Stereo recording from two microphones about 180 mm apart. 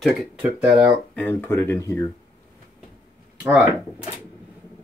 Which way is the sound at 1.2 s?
15° left (ahead or behind).